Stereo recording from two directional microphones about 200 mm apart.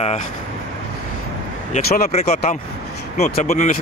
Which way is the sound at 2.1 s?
30° left (ahead or behind).